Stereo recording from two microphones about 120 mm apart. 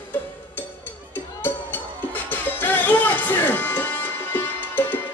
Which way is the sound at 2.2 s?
15° left (ahead or behind).